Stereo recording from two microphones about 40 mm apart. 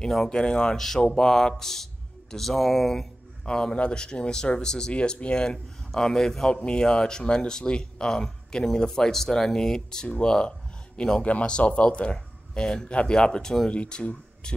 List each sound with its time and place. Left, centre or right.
0.0 s speech: centre
0.7 s speech: centre
3.4 s speech: centre
13.7 s speech: left